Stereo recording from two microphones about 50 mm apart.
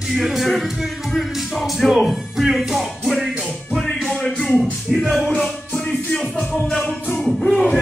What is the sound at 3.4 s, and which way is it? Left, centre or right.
Music, centre.